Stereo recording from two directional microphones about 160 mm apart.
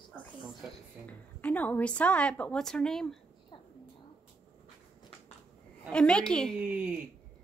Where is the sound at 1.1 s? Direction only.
10° left (ahead or behind).